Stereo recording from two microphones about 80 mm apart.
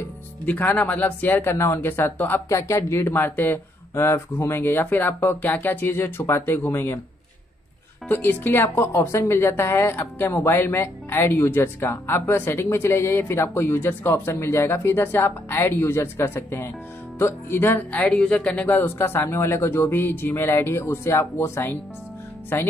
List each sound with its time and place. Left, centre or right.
0.5 s speech: left
8.1 s speech: left
18.7 s speech: left